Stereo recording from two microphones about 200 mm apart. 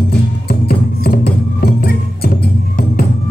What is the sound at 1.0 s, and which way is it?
Music, 50° left (ahead or behind).